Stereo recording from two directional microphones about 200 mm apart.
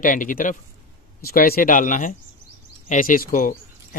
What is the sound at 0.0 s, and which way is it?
A man's voice, 40° left (ahead or behind).